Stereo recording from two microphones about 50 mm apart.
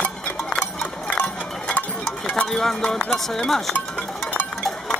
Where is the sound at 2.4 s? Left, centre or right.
Centre.